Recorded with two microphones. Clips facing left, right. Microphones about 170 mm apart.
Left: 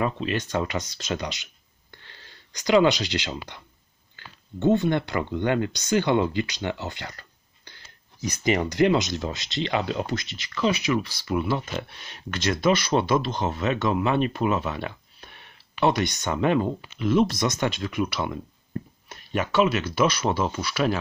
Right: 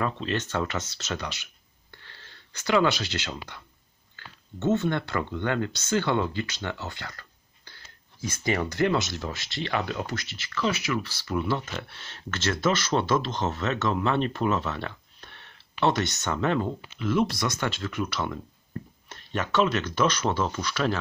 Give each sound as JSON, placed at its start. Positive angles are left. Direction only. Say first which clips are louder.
{"t": 0.0, "sound": "speech", "louder": "left 2 dB", "side_deg": 10}